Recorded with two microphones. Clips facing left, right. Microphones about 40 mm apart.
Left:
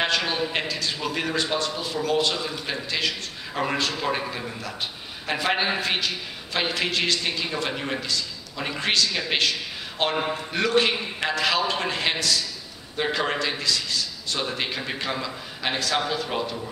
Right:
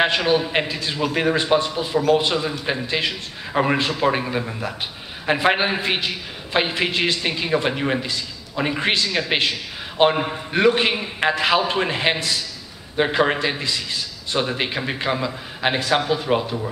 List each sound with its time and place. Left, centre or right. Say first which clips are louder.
0.2 s a man's voice: right 7 dB; centre
0.5 s a man's voice: right 4 dB; right